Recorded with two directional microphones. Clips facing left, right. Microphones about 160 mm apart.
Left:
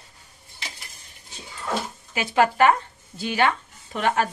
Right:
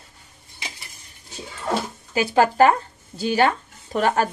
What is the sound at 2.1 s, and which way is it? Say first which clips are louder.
Speech: right 3 dB; 35° right (ahead or behind).